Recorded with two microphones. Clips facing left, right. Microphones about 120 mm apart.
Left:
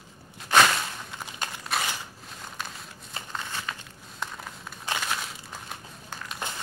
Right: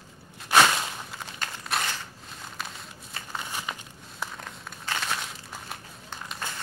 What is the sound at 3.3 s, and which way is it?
Crumpling, 15° right (ahead or behind).